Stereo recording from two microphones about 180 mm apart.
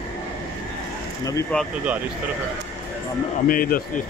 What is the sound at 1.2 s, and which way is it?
Speech, 20° left (ahead or behind).